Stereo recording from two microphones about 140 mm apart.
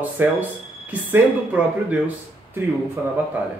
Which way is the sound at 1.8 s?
10° right (ahead or behind).